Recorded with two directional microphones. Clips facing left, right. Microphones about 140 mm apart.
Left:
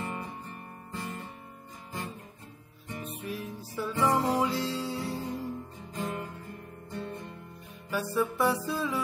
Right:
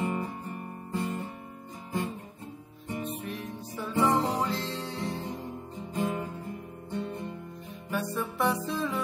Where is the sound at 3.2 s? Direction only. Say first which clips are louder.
Even; centre (ahead or behind).